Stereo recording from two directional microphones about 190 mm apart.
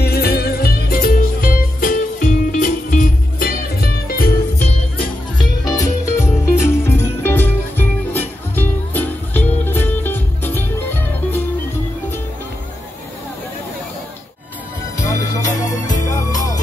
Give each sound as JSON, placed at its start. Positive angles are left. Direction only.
{"t": 0.0, "sound": "music", "side_deg": 55}
{"t": 5.7, "sound": "music", "side_deg": 15}
{"t": 15.0, "sound": "music", "side_deg": 15}
{"t": 15.9, "sound": "music", "side_deg": 40}